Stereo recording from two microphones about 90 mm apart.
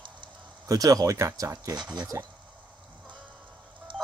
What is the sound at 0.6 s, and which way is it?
Speech, 40° right (ahead or behind).